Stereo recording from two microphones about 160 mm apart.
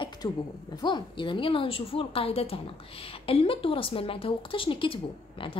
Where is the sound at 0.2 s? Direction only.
25° left (ahead or behind).